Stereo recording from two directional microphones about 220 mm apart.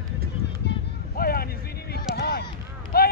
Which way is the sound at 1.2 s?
45° left (ahead or behind).